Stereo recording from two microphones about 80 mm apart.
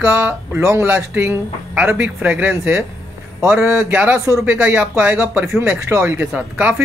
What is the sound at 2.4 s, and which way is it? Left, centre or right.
Speech, right.